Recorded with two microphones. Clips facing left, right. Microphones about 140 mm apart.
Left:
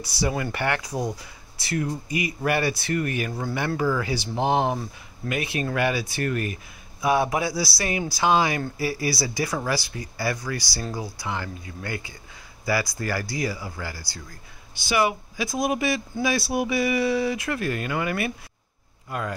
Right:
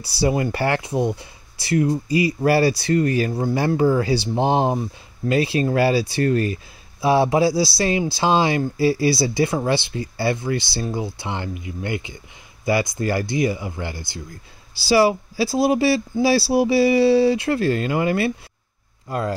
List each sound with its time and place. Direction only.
0.0 s speech: 30° right (ahead or behind)
14.7 s speech: 35° right (ahead or behind)